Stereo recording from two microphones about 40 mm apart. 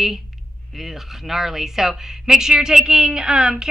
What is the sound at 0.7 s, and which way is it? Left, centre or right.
A woman's voice, centre.